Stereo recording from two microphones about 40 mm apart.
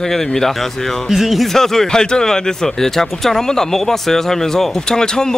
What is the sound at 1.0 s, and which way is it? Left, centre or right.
Speech, centre.